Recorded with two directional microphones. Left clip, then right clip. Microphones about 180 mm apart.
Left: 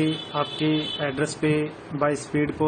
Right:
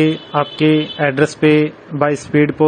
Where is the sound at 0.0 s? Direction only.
35° right (ahead or behind).